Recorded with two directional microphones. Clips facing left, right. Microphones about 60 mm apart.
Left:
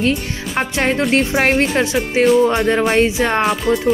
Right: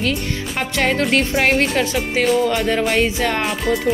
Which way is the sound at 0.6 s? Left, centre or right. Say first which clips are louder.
Left 2 dB; left.